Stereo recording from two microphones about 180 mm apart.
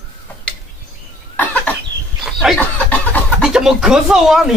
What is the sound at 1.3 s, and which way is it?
Cough, 10° left (ahead or behind).